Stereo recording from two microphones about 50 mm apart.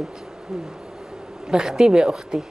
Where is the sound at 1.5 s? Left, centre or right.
Centre.